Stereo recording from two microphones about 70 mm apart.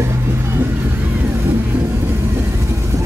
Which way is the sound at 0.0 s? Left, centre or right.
Right.